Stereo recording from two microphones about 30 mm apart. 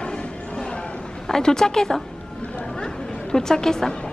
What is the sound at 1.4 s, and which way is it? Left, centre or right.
Speech, left.